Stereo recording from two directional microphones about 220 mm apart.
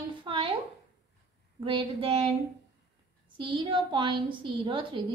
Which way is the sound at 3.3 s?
20° right (ahead or behind).